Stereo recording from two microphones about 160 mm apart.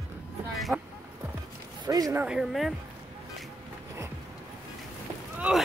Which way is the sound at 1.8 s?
25° right (ahead or behind).